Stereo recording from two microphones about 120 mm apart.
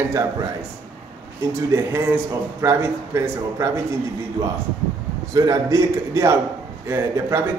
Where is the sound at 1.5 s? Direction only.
20° right (ahead or behind).